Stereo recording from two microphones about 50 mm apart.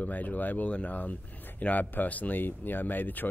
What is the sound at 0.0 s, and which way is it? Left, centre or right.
Speech, left.